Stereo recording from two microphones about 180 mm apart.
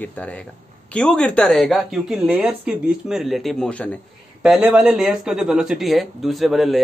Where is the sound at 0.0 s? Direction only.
5° left (ahead or behind).